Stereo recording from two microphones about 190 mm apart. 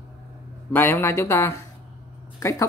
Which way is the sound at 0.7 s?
10° left (ahead or behind).